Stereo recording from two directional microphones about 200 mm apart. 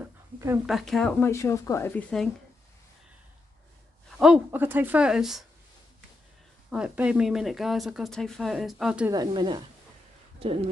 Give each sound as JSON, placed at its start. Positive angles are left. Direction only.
{"t": 0.0, "sound": "a sound", "side_deg": -15}
{"t": 0.7, "sound": "speech", "side_deg": 0}
{"t": 1.2, "sound": "speech", "side_deg": 15}
{"t": 4.2, "sound": "speech", "side_deg": -5}
{"t": 6.7, "sound": "speech", "side_deg": -5}
{"t": 9.1, "sound": "speech", "side_deg": -20}